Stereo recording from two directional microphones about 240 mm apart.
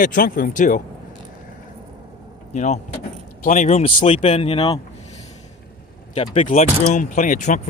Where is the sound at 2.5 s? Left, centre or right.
Left.